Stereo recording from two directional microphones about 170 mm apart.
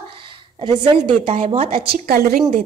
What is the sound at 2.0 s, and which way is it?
Speech, 65° right (ahead or behind).